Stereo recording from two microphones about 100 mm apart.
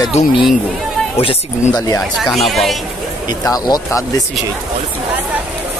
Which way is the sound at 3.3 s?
40° left (ahead or behind).